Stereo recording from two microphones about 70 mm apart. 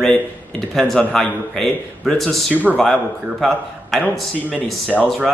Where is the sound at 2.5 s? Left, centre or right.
Right.